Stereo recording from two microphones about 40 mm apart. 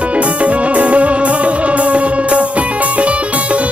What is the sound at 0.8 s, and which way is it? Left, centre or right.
Music, right.